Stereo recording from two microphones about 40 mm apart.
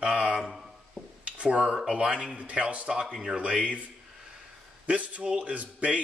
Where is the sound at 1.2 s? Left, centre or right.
Right.